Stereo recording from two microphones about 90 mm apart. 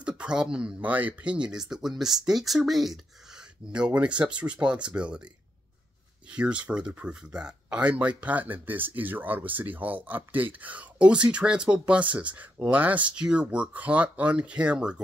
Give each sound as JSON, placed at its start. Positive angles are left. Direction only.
{"t": 0.0, "sound": "speech", "side_deg": -10}
{"t": 6.3, "sound": "speech", "side_deg": -15}